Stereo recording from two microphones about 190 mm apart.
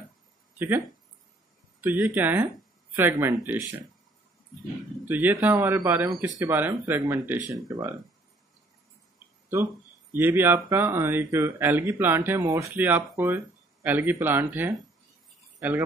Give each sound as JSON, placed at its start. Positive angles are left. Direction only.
{"t": 0.6, "sound": "speech", "side_deg": -10}
{"t": 5.0, "sound": "speech", "side_deg": -10}
{"t": 10.1, "sound": "speech", "side_deg": -10}